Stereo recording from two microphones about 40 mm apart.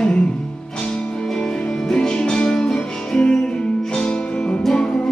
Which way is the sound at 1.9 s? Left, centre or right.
Centre.